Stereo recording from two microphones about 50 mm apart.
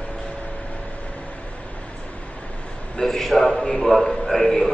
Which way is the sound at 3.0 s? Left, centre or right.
Centre.